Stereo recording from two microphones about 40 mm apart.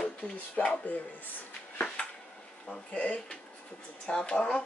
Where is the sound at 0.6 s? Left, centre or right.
Left.